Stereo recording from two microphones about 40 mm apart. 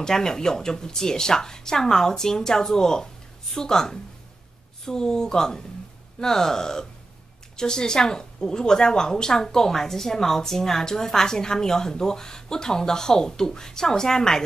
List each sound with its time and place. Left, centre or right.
0.0 s a woman's voice: centre